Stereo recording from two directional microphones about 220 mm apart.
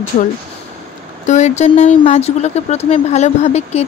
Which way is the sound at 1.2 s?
30° left (ahead or behind).